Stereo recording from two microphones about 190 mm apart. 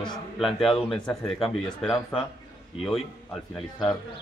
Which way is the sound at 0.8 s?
5° left (ahead or behind).